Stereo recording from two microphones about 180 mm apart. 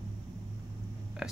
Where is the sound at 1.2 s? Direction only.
5° right (ahead or behind).